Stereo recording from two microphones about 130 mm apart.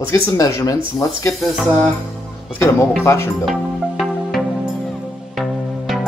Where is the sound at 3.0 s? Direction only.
20° left (ahead or behind).